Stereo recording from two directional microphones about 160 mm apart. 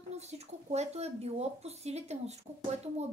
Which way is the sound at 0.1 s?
45° right (ahead or behind).